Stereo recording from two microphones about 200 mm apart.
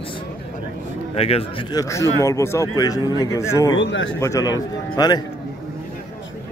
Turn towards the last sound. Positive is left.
turn(degrees=20)  # may be behind; listen again after turning